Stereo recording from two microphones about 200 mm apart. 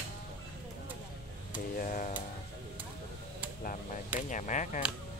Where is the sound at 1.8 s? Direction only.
40° left (ahead or behind).